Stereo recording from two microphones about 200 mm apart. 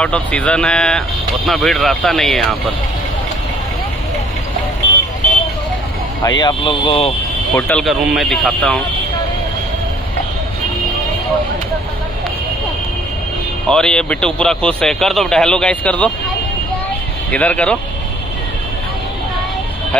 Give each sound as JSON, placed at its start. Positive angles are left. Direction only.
{"t": 0.0, "sound": "a man's voice", "side_deg": 5}
{"t": 6.2, "sound": "speech", "side_deg": 20}
{"t": 7.5, "sound": "a man's voice", "side_deg": 5}
{"t": 13.7, "sound": "a man's voice", "side_deg": 5}
{"t": 17.3, "sound": "speech", "side_deg": 5}